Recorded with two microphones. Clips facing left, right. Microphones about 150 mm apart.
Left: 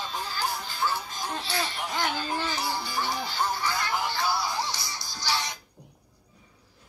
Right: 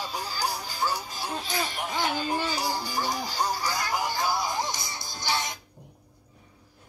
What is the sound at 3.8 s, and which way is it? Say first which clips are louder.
Music: right 2 dB; 40° right (ahead or behind).